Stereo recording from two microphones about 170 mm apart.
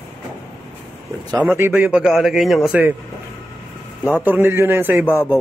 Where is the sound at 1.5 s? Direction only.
10° right (ahead or behind).